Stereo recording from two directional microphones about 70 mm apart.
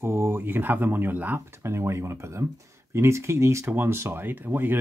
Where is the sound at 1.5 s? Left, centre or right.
Right.